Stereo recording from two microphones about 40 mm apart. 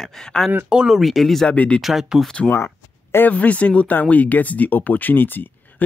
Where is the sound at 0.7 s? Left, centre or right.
Right.